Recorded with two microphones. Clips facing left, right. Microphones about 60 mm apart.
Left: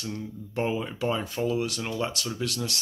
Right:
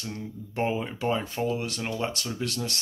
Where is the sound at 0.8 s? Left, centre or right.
Centre.